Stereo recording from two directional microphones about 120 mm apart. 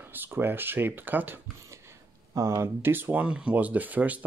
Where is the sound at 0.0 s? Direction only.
15° right (ahead or behind).